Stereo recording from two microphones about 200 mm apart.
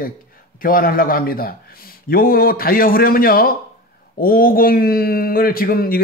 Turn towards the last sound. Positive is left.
turn(degrees=45)  # may be behind; listen again after turning